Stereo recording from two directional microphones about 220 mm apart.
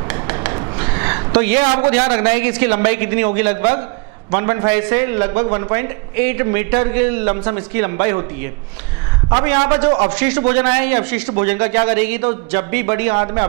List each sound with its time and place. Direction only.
0.1 s a sound: 10° right (ahead or behind)
1.9 s a man's voice: 10° right (ahead or behind)
10.1 s a man's voice: 10° right (ahead or behind)